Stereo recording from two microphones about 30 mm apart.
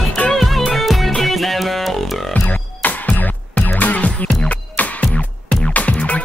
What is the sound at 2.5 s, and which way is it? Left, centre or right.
Music, left.